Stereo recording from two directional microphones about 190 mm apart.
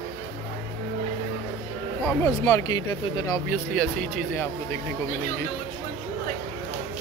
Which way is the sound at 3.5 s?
5° left (ahead or behind).